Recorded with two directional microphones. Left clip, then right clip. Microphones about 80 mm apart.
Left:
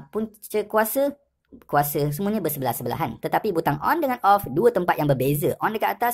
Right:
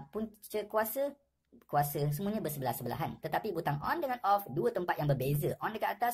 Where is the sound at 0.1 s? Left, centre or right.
Left.